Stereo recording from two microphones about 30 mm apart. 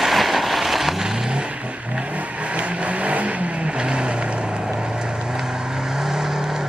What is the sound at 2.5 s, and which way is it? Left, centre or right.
Vehicle, right.